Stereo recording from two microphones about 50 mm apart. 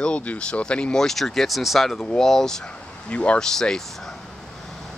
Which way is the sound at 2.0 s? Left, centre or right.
Centre.